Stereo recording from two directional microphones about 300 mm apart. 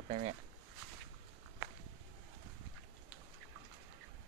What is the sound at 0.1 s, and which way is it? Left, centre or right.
Speech, centre.